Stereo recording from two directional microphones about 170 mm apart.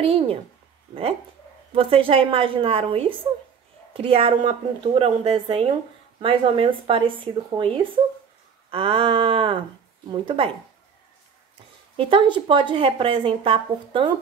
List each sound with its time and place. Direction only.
0.0 s speech: 35° right (ahead or behind)
1.7 s speech: 30° right (ahead or behind)
12.0 s speech: 30° right (ahead or behind)